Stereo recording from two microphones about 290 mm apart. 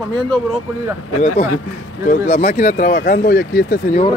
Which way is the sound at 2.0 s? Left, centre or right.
Left.